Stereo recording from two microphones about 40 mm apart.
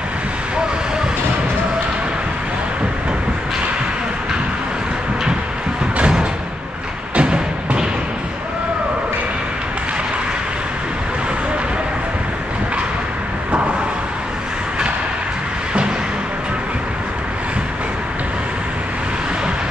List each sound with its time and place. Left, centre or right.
5.9 s music: right